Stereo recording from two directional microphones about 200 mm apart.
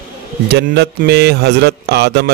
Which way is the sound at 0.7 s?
55° right (ahead or behind).